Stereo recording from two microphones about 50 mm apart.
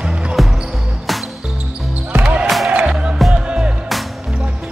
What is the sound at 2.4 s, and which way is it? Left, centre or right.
Music, centre.